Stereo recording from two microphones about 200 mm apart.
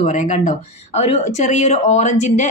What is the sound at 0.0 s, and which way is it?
Speech, 35° left (ahead or behind).